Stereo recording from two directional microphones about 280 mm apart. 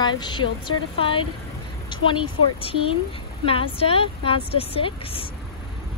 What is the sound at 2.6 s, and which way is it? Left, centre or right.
Speech, centre.